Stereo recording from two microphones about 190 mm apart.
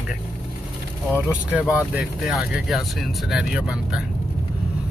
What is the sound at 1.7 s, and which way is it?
Speech, 5° right (ahead or behind).